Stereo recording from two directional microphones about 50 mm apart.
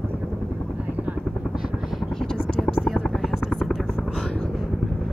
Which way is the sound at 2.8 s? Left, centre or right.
Centre.